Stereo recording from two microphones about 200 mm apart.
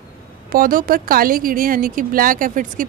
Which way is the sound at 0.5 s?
45° right (ahead or behind).